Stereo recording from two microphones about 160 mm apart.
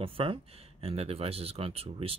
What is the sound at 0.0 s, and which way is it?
Speech, 35° right (ahead or behind).